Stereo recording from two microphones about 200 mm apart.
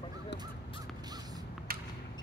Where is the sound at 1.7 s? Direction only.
45° right (ahead or behind).